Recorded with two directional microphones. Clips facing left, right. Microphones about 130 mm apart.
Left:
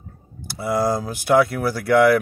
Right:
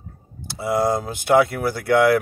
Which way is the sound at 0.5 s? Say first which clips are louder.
Right 1 dB; 20° right (ahead or behind).